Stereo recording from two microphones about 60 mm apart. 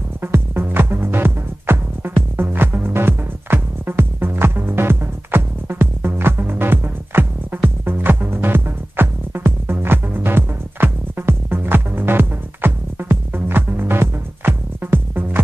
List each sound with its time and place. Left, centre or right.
0.2 s music: right